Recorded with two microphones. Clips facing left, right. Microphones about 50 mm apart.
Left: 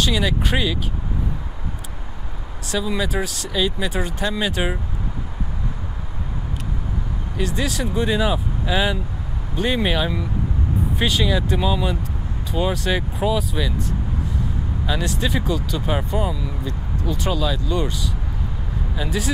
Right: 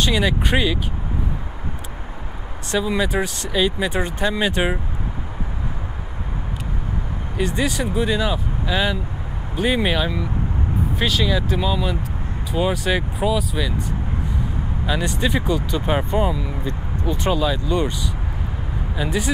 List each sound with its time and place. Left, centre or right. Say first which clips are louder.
0.0 s speech: right 1 dB; centre
2.7 s speech: right 2 dB; centre
7.3 s speech: right 2 dB; centre
14.9 s speech: right 2 dB; centre
15.7 s speech: right 3 dB; centre
18.9 s speech: right 2 dB; centre